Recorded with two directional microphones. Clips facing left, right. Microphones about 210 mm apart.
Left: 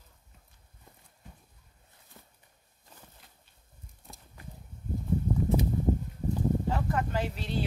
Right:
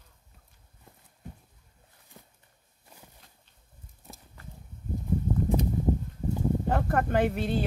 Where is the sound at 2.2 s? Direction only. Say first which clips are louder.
Right 3 dB; 15° right (ahead or behind).